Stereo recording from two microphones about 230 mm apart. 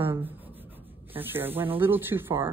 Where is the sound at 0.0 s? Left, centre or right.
Centre.